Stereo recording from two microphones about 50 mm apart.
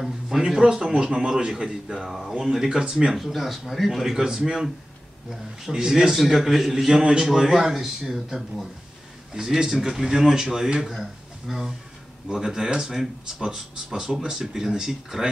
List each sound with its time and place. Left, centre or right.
0.4 s a man's voice: centre
2.8 s speech: right
3.1 s a man's voice: centre